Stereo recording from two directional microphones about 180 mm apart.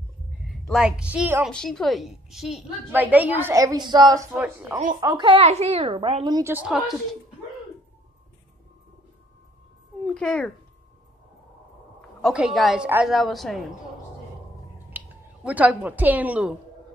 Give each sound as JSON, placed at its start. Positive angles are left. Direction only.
{"t": 0.7, "sound": "a woman's voice", "side_deg": -5}
{"t": 1.5, "sound": "a woman's voice", "side_deg": 5}
{"t": 4.4, "sound": "a woman's voice", "side_deg": -10}
{"t": 5.0, "sound": "speech", "side_deg": -25}
{"t": 6.3, "sound": "a woman's voice", "side_deg": -15}
{"t": 6.7, "sound": "a woman's voice", "side_deg": 0}
{"t": 10.0, "sound": "speech", "side_deg": 5}
{"t": 12.2, "sound": "a woman's voice", "side_deg": 0}
{"t": 14.9, "sound": "speech", "side_deg": -10}